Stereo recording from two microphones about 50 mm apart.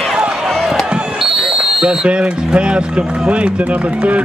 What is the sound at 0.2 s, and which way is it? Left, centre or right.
Run, centre.